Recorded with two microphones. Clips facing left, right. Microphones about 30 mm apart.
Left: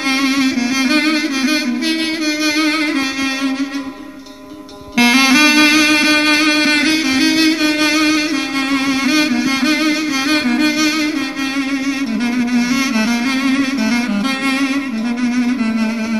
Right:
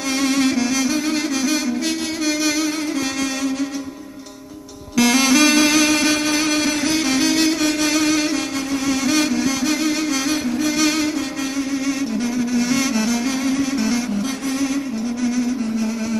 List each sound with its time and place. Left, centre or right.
0.2 s music: left
0.8 s music: left
1.1 s music: left
4.9 s music: left
6.1 s music: left
7.1 s music: left
12.6 s music: left
15.2 s music: left